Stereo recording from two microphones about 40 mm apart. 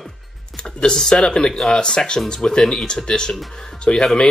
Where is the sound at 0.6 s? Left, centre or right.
Left.